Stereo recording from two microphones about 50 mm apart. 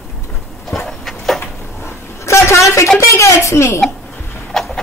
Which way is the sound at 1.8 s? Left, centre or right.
Left.